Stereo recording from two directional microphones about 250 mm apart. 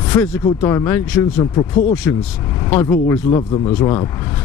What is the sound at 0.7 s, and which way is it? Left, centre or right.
Speech, centre.